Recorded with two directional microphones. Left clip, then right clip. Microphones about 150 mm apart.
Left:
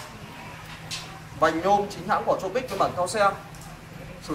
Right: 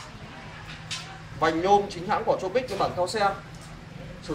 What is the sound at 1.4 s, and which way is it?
Speech, 35° left (ahead or behind).